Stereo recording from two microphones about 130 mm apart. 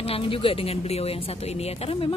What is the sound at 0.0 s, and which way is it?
Speech, 45° left (ahead or behind).